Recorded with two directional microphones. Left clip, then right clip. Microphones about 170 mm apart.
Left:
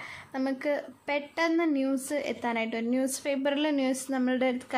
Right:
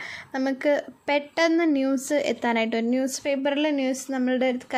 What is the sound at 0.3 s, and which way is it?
A woman's voice, 25° right (ahead or behind).